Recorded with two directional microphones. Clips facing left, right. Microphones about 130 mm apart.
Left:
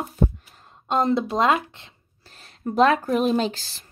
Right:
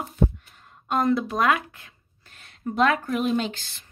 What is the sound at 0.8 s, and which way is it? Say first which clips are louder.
Speech: left 1 dB; 25° left (ahead or behind).